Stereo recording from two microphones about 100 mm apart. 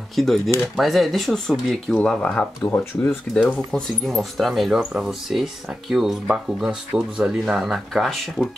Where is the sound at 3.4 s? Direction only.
10° left (ahead or behind).